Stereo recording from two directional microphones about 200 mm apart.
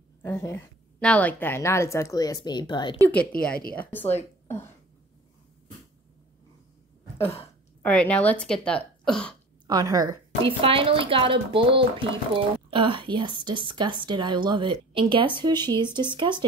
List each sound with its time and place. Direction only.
0.2 s a woman's voice: 15° left (ahead or behind)
3.1 s a woman's voice: 5° left (ahead or behind)
7.2 s a sound: 30° left (ahead or behind)
7.8 s a woman's voice: 5° left (ahead or behind)
9.7 s a woman's voice: 20° right (ahead or behind)